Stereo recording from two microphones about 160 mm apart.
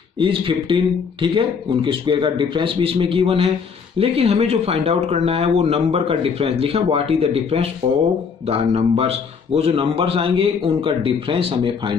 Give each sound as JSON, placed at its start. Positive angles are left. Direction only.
{"t": 0.2, "sound": "speech", "side_deg": -30}